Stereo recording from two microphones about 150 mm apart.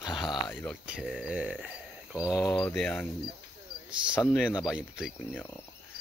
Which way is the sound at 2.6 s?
5° left (ahead or behind).